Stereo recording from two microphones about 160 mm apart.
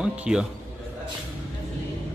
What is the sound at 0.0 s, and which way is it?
Speech, 5° right (ahead or behind).